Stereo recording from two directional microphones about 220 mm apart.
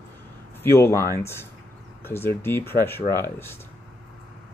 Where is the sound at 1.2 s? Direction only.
10° left (ahead or behind).